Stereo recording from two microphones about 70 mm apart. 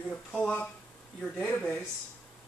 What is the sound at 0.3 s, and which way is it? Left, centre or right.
Speech, centre.